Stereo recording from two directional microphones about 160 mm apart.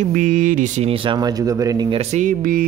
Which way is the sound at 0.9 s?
30° right (ahead or behind).